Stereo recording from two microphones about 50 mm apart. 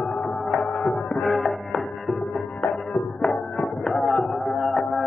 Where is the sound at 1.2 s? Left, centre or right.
Centre.